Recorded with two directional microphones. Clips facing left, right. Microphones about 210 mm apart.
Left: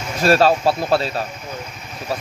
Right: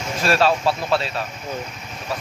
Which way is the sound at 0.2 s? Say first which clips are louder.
Left 4 dB; 40° left (ahead or behind).